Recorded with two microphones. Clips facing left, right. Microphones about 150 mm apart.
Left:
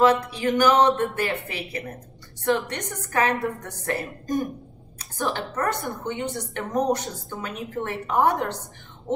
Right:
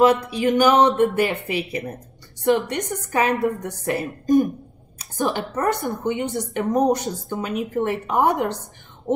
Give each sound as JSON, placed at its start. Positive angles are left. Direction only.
{"t": 0.0, "sound": "a woman's voice", "side_deg": -15}